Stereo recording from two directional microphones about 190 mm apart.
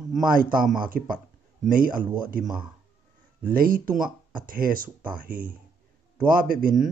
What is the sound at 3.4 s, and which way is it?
Speech, 50° right (ahead or behind).